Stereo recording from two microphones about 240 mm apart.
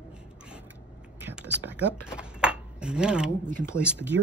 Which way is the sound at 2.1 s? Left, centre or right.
Centre.